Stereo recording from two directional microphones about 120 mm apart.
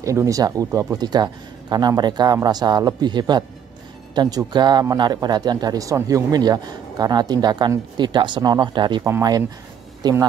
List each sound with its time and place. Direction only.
0.0 s speech: 25° right (ahead or behind)
9.0 s speech: 30° right (ahead or behind)